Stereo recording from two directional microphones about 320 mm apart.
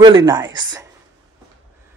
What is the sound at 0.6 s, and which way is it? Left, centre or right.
Speech, centre.